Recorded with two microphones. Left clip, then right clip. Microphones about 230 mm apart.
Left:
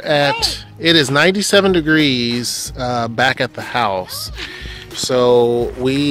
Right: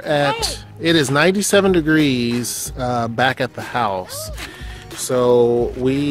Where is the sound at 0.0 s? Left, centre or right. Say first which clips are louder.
Left 3 dB; centre.